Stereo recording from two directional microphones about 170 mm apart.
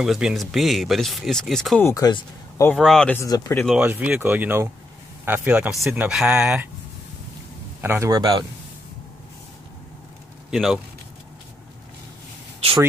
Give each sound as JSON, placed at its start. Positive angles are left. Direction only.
{"t": 0.0, "sound": "speech", "side_deg": 0}
{"t": 1.9, "sound": "speech", "side_deg": 25}
{"t": 2.6, "sound": "speech", "side_deg": 5}
{"t": 3.2, "sound": "speech", "side_deg": 20}
{"t": 3.8, "sound": "speech", "side_deg": -10}
{"t": 7.8, "sound": "a man's voice", "side_deg": -15}
{"t": 10.5, "sound": "speech", "side_deg": 0}